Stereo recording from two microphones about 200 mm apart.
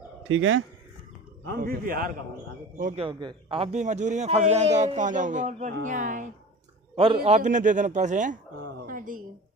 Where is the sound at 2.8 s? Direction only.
30° right (ahead or behind).